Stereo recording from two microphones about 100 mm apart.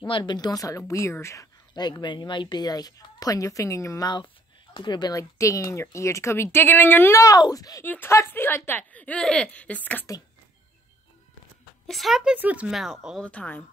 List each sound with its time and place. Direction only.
0.2 s a woman's voice: 40° left (ahead or behind)
1.7 s a woman's voice: 45° left (ahead or behind); by 4.1 s 30° left (ahead or behind)
4.7 s speech: 50° left (ahead or behind)
5.1 s speech: 35° left (ahead or behind)
7.2 s a woman's voice: 40° left (ahead or behind)
7.8 s speech: 20° left (ahead or behind)
11.9 s a woman's voice: centre (ahead or behind)
12.4 s speech: 15° right (ahead or behind)
12.7 s a woman's voice: centre (ahead or behind)
13.2 s speech: 10° left (ahead or behind)